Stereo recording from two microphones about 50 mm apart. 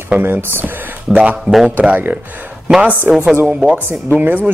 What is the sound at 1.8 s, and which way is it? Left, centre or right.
Speech, right.